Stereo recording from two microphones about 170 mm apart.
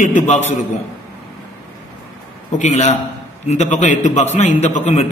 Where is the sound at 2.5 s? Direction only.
45° left (ahead or behind).